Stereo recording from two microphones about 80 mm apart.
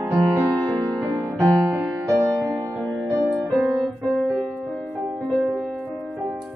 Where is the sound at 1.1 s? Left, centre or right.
Right.